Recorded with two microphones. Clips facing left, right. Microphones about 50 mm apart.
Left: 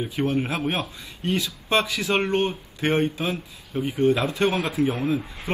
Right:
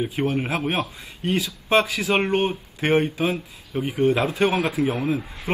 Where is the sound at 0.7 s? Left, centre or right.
Right.